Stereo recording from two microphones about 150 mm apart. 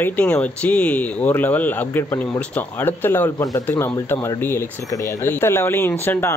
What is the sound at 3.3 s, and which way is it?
Speech, 25° left (ahead or behind).